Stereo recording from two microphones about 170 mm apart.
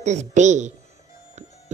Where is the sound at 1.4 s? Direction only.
40° right (ahead or behind).